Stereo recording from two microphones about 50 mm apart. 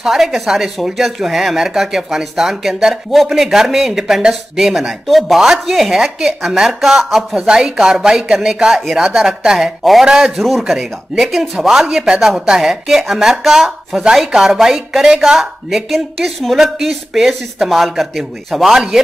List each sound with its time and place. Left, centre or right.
0.0 s speech: centre